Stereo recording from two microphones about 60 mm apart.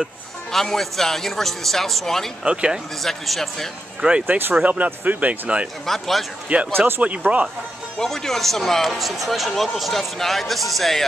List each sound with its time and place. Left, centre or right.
0.5 s speech: centre
2.4 s speech: centre
3.0 s speech: centre
4.3 s speech: right
5.9 s speech: centre
6.5 s speech: right
8.0 s speech: centre